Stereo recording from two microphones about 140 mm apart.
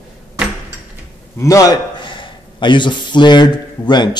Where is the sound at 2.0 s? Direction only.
35° left (ahead or behind).